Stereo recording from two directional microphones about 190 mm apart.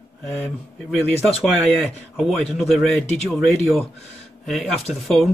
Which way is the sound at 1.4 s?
Centre (ahead or behind).